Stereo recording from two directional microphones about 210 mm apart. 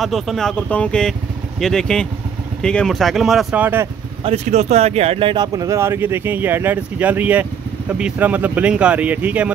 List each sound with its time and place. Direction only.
0.0 s speech: centre (ahead or behind)
4.2 s speech: 30° right (ahead or behind); by 9.5 s 5° right (ahead or behind)